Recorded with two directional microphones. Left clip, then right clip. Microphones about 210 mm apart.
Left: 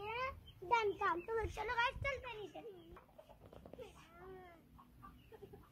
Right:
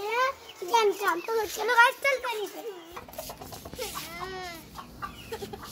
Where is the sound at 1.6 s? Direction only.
15° right (ahead or behind).